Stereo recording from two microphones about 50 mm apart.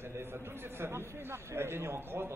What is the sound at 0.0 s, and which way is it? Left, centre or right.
A man's voice, right.